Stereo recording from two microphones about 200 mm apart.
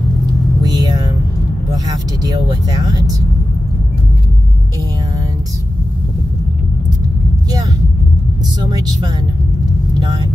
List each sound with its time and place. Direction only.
0.6 s vehicle: 20° right (ahead or behind)
2.2 s speech: 20° right (ahead or behind)
8.6 s speech: 20° right (ahead or behind)